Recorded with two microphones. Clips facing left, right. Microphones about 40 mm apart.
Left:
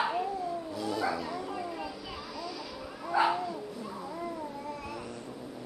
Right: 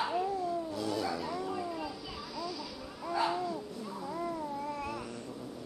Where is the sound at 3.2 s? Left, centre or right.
Centre.